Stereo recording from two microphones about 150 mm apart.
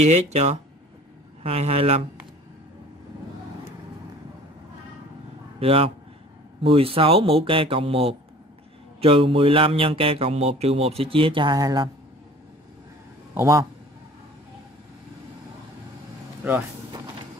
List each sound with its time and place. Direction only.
0.0 s speech: 45° right (ahead or behind)
5.6 s a man's voice: 40° right (ahead or behind)
6.6 s mantra: 40° right (ahead or behind)
13.3 s a man's voice: 20° right (ahead or behind)